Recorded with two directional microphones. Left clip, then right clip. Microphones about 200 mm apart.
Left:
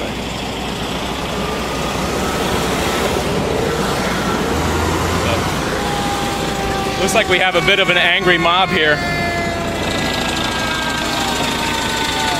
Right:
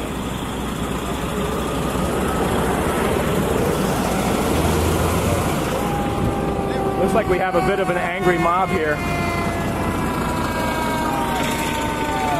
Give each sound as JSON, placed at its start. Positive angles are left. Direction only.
{"t": 7.2, "sound": "speech", "side_deg": 15}